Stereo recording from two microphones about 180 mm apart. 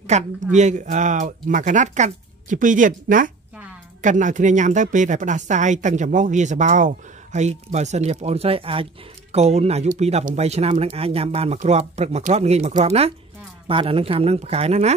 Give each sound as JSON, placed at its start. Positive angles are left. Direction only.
{"t": 0.0, "sound": "speech", "side_deg": -40}